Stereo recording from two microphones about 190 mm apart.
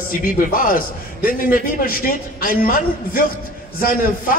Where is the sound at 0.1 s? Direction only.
50° left (ahead or behind).